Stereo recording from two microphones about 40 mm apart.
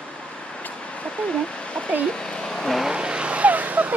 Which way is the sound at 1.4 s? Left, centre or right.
Left.